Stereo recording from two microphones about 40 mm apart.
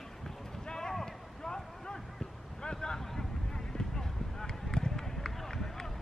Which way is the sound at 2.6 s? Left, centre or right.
Centre.